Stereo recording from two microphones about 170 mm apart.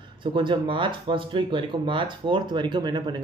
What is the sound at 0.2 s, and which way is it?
Speech, 30° right (ahead or behind).